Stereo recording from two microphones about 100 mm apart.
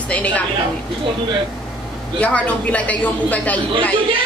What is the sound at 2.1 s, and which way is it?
A woman's voice, 15° left (ahead or behind).